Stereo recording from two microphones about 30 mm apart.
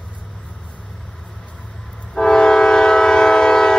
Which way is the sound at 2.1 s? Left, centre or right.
Left.